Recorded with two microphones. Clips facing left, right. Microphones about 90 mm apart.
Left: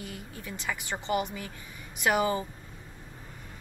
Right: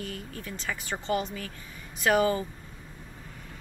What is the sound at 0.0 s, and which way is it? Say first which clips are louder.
A woman's voice: right 3 dB; 15° left (ahead or behind).